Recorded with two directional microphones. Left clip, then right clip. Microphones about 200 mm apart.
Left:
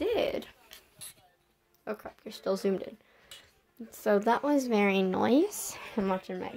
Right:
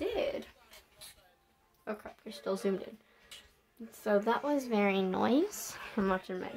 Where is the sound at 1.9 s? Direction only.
25° left (ahead or behind).